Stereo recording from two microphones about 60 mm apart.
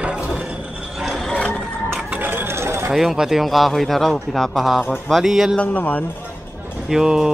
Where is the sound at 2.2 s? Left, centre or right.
Right.